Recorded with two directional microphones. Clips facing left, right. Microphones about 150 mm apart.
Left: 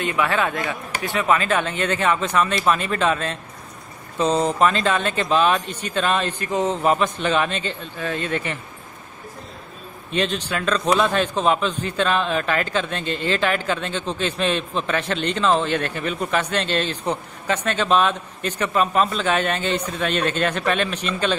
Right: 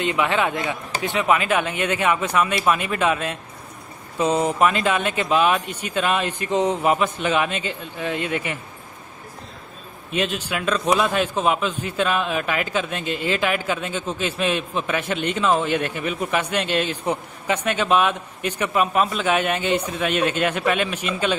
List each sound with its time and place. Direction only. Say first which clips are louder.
0.0 s a man's voice: right 1 dB; 20° right (ahead or behind)
10.1 s a man's voice: left 1 dB; 10° right (ahead or behind)